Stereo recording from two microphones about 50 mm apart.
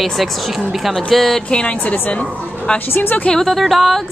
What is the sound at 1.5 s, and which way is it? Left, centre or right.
Speech, left.